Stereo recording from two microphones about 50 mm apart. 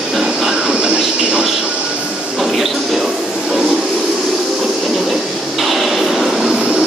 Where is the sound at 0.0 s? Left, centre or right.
Centre.